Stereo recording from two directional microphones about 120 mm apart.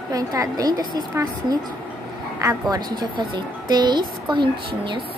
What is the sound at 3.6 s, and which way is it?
A woman's voice, 35° right (ahead or behind).